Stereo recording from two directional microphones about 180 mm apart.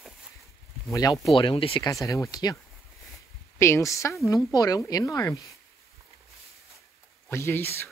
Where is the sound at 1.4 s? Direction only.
30° left (ahead or behind).